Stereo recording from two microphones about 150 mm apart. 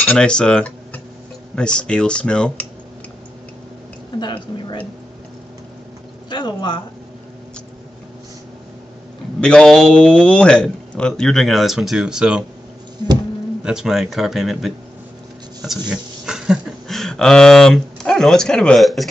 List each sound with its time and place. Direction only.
0.0 s speech: 5° left (ahead or behind)
4.2 s a woman's voice: 30° left (ahead or behind)
6.3 s speech: 30° left (ahead or behind)
9.4 s a man's voice: 5° left (ahead or behind)
13.7 s a man's voice: 5° right (ahead or behind)
15.9 s speech: 5° right (ahead or behind)